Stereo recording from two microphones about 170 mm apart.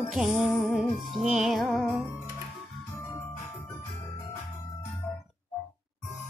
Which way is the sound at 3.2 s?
15° left (ahead or behind).